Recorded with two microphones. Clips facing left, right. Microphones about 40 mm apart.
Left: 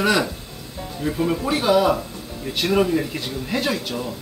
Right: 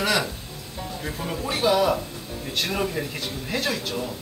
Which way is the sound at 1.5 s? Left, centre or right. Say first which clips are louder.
Left 2 dB; centre.